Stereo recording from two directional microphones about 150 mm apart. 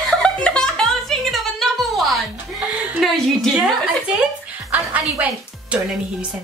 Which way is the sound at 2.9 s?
Centre (ahead or behind).